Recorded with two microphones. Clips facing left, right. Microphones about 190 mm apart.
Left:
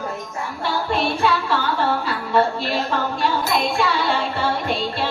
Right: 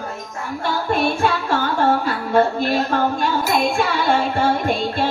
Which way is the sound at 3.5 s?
50° right (ahead or behind).